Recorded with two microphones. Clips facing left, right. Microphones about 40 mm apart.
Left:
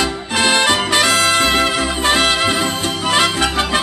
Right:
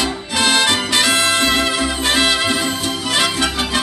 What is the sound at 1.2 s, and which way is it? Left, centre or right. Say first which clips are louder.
Music: left 2 dB; left.